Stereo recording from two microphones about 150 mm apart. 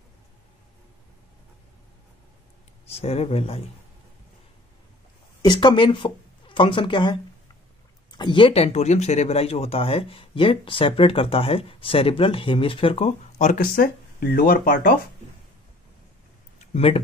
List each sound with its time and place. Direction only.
2.9 s speech: 45° left (ahead or behind)
5.4 s speech: 30° left (ahead or behind); by 15.0 s 70° left (ahead or behind)
16.5 s a sound: 45° left (ahead or behind)